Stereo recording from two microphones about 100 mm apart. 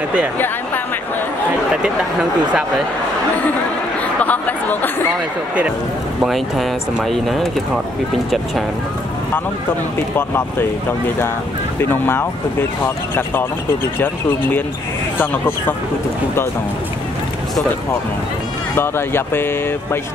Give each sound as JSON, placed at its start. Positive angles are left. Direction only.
{"t": 4.2, "sound": "a sound", "side_deg": 15}
{"t": 6.2, "sound": "speech", "side_deg": 0}
{"t": 10.1, "sound": "speech", "side_deg": 20}
{"t": 11.8, "sound": "speech", "side_deg": 20}
{"t": 18.8, "sound": "speech", "side_deg": 20}